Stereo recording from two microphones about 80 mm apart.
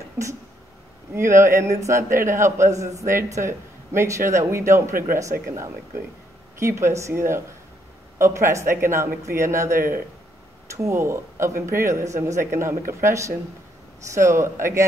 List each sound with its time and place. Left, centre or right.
0.2 s a man's voice: right
10.8 s a man's voice: right